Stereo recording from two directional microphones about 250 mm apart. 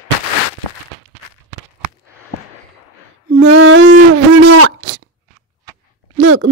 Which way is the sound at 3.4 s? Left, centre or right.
Right.